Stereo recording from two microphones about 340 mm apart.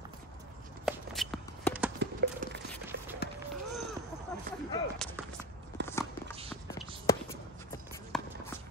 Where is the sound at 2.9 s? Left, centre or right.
Right.